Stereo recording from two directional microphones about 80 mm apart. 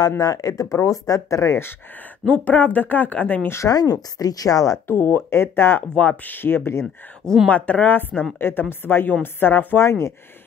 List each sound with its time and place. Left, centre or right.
0.2 s speech: left
2.2 s a woman's voice: centre
3.4 s speech: left
3.7 s speech: left
4.8 s a woman's voice: left
7.4 s a woman's voice: centre
9.8 s speech: left